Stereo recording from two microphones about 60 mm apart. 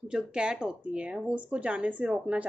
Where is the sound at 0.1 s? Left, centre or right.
Centre.